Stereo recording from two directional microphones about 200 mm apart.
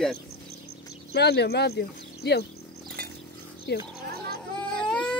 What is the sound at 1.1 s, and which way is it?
Speech, 55° left (ahead or behind).